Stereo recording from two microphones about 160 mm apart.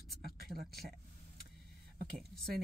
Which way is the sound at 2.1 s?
Centre (ahead or behind).